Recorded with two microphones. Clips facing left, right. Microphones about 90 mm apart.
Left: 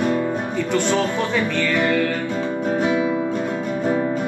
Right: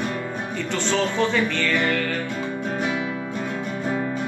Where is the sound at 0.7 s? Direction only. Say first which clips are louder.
Left 2 dB; 10° left (ahead or behind).